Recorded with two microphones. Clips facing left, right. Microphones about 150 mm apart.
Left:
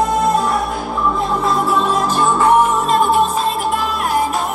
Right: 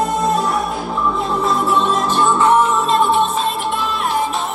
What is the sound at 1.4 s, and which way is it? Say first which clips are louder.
Music: even; centre (ahead or behind).